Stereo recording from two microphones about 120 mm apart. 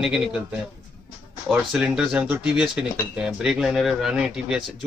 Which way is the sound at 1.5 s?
5° right (ahead or behind).